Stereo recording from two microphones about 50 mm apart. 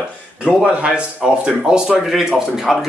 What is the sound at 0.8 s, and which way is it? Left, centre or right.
Speech, right.